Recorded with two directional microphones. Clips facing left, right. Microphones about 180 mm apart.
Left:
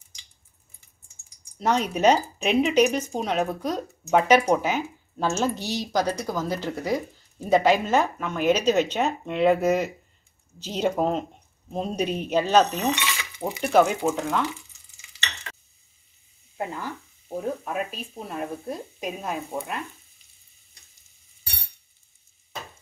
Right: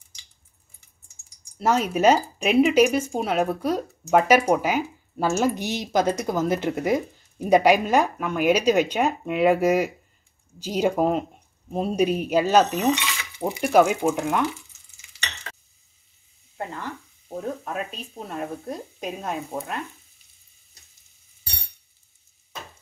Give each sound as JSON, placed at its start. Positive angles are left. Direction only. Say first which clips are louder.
{"t": 1.6, "sound": "speech", "louder": "right 2 dB", "side_deg": -5}
{"t": 16.5, "sound": "speech", "louder": "left 1 dB", "side_deg": 10}